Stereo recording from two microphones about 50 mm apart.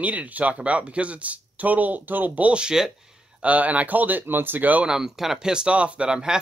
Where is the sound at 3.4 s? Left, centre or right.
Right.